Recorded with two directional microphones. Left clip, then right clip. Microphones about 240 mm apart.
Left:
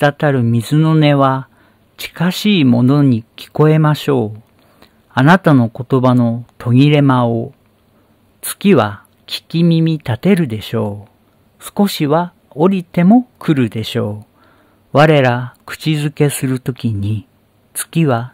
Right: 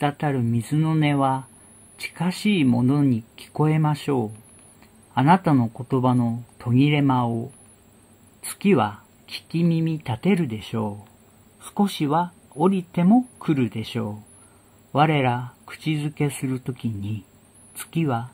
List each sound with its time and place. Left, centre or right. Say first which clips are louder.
0.0 s speech: left 11 dB; left
8.5 s speech: left 8 dB; left